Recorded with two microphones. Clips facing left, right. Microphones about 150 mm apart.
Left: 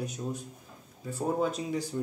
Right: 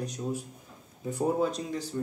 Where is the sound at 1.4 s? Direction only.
5° left (ahead or behind).